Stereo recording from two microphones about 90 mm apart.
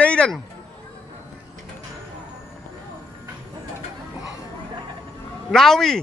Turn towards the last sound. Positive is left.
turn(degrees=5)  # may be behind; listen again after turning